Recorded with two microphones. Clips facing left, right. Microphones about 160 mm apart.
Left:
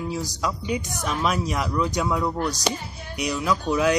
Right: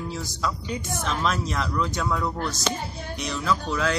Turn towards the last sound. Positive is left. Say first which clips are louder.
# left 4 dB
turn(degrees=15)  # may be behind; listen again after turning